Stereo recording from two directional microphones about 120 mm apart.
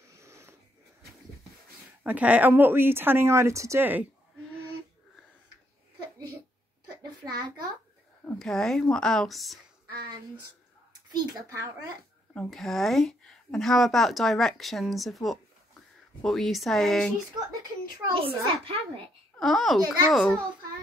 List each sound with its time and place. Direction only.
0.0 s a sound: 25° right (ahead or behind)
2.0 s speech: 10° right (ahead or behind)
7.0 s a sound: 35° right (ahead or behind)
8.4 s speech: 5° left (ahead or behind)
11.1 s a child's voice: 25° right (ahead or behind)
12.4 s speech: centre (ahead or behind)
18.2 s a child's voice: 50° right (ahead or behind)
19.3 s speech: centre (ahead or behind)